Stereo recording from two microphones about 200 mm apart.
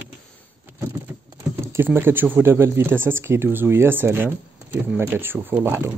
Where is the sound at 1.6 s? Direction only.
10° right (ahead or behind).